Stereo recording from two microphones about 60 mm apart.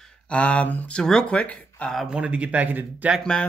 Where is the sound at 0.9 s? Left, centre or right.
Centre.